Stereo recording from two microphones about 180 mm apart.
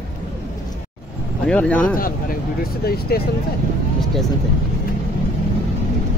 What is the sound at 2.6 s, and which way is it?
Speech, 60° left (ahead or behind).